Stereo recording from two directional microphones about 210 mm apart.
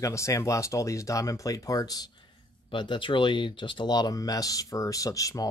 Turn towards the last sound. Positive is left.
turn(degrees=15)  # may be behind; listen again after turning